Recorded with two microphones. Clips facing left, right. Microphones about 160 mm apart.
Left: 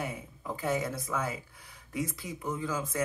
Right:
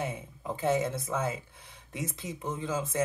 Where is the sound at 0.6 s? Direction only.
25° right (ahead or behind).